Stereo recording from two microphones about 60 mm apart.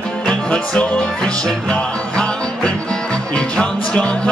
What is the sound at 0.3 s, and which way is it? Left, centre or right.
Music, centre.